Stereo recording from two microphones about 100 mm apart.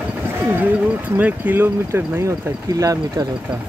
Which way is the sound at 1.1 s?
15° right (ahead or behind).